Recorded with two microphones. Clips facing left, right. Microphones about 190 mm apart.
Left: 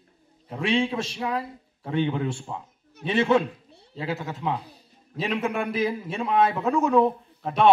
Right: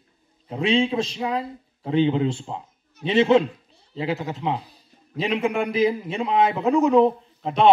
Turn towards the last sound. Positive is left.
turn(degrees=-20)  # may be behind; listen again after turning